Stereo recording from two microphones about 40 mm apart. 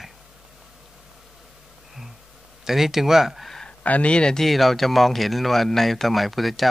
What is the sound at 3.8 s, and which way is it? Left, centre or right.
Speech, left.